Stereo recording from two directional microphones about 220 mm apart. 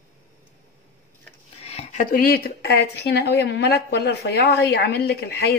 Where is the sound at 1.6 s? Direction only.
30° left (ahead or behind).